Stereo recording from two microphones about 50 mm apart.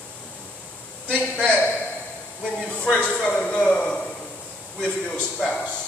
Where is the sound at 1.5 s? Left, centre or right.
Left.